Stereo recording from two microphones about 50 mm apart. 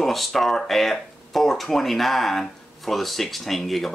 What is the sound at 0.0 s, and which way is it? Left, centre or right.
Speech, centre.